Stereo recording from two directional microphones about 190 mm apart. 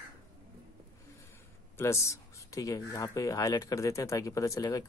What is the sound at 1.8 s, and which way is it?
Speech, 15° left (ahead or behind).